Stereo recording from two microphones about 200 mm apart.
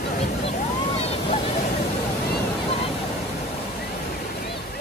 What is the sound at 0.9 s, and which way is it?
Waves, 30° left (ahead or behind).